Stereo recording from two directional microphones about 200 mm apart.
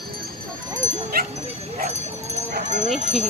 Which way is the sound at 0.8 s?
40° right (ahead or behind).